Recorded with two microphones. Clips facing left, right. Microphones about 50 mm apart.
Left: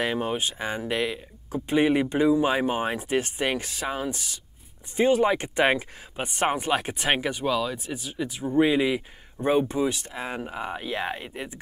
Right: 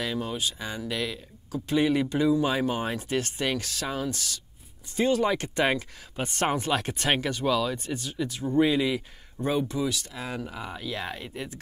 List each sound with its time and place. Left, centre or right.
0.0 s speech: left